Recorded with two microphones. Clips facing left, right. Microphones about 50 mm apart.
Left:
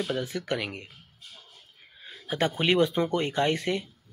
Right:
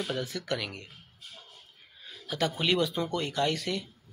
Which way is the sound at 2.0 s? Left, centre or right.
Left.